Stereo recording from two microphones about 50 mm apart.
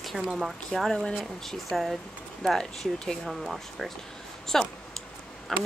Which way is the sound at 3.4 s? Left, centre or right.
Centre.